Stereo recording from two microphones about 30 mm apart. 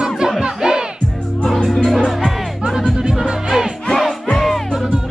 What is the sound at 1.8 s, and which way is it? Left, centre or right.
Music, centre.